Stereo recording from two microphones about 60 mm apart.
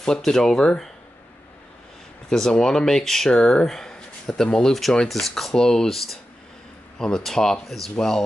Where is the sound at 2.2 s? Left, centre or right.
Centre.